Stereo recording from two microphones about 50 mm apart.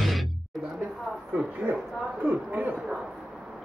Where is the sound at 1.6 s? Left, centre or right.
Right.